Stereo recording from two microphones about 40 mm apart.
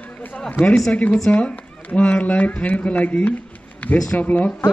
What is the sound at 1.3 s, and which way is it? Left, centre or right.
Speech, left.